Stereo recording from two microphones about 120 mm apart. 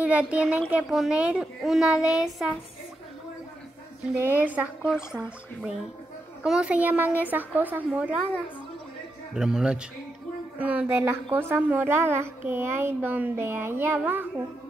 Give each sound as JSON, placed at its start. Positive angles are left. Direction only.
{"t": 0.0, "sound": "a woman's voice", "side_deg": -10}
{"t": 4.0, "sound": "a woman's voice", "side_deg": -15}
{"t": 9.3, "sound": "a woman's voice", "side_deg": -5}